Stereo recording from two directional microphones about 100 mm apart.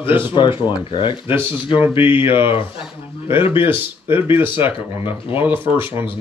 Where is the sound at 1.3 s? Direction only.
20° right (ahead or behind).